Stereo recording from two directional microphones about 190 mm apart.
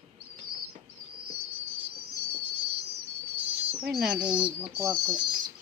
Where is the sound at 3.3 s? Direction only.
5° right (ahead or behind).